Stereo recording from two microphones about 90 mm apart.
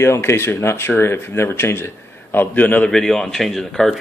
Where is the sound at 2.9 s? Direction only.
5° left (ahead or behind).